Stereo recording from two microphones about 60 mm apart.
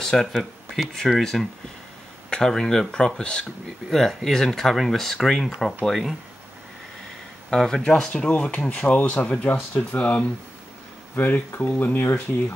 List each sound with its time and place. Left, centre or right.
0.0 s speech: centre
7.5 s speech: centre; by 12.0 s left
12.0 s speech: left